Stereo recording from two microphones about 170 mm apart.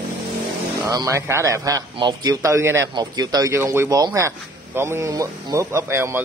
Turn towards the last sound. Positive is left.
turn(degrees=-15)  # may be behind; listen again after turning